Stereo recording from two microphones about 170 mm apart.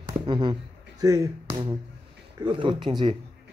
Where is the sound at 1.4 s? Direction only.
30° right (ahead or behind).